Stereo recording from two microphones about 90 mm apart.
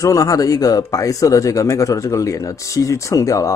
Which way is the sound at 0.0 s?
40° left (ahead or behind).